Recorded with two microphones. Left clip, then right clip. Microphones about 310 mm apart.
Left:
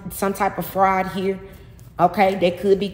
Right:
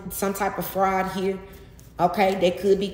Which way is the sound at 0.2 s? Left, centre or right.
Centre.